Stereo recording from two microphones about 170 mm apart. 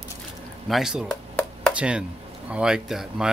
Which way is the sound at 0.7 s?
Centre (ahead or behind).